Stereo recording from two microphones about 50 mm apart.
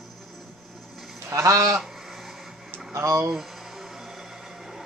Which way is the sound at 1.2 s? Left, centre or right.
Right.